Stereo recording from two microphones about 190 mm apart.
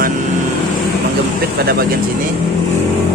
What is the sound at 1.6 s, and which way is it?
Speech, 55° right (ahead or behind).